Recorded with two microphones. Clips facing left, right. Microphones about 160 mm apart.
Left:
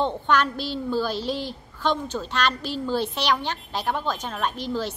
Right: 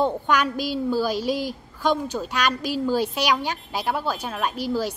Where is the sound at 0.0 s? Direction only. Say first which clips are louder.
Right 1 dB; 10° right (ahead or behind).